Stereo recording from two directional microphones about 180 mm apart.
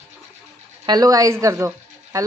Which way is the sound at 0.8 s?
20° right (ahead or behind).